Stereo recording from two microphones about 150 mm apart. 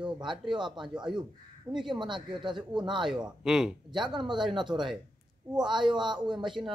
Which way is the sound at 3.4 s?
5° right (ahead or behind).